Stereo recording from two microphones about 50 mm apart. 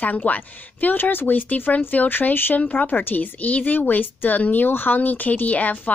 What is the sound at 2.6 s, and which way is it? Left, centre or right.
Speech, left.